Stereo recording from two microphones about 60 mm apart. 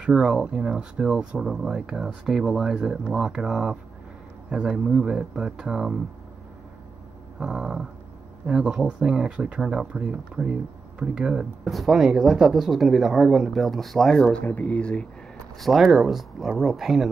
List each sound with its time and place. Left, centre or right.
0.0 s speech: centre
7.3 s speech: centre
11.7 s speech: centre
14.1 s speech: centre
14.4 s speech: left
15.6 s speech: centre